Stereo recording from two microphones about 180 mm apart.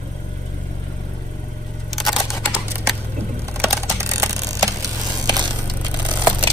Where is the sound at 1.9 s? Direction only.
Centre (ahead or behind).